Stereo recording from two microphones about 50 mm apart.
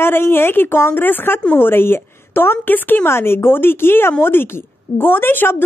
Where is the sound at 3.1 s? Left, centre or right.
Left.